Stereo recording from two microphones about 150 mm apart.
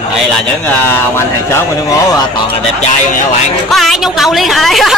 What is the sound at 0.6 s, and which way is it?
Speech, 10° left (ahead or behind).